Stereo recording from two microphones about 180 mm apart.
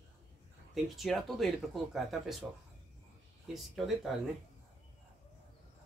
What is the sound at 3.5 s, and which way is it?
Speech, centre (ahead or behind).